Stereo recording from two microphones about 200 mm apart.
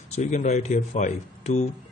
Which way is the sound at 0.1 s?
35° left (ahead or behind).